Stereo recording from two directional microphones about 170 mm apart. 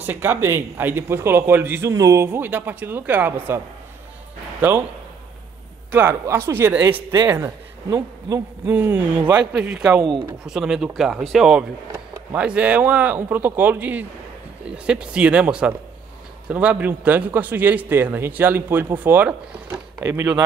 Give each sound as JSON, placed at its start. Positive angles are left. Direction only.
{"t": 0.0, "sound": "a man's voice", "side_deg": -10}
{"t": 5.9, "sound": "speech", "side_deg": -10}